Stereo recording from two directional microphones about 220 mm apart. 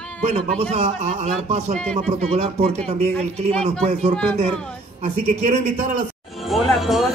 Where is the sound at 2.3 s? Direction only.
25° right (ahead or behind).